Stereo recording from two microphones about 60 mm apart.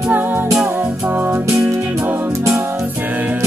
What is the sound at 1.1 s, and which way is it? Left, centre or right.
Music, right.